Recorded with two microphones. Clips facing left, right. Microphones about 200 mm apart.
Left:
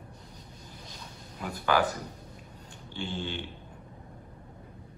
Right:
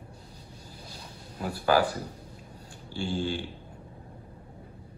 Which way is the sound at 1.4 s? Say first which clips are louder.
Right 4 dB; 35° right (ahead or behind).